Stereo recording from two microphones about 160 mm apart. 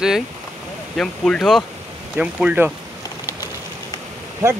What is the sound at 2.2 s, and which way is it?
Speech, 5° right (ahead or behind).